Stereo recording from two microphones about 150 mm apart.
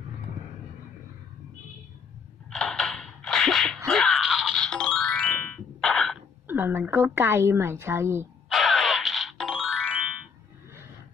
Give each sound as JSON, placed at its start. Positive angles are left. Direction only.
{"t": 2.5, "sound": "a sound", "side_deg": 5}
{"t": 6.4, "sound": "a woman's voice", "side_deg": -15}
{"t": 8.5, "sound": "music", "side_deg": 0}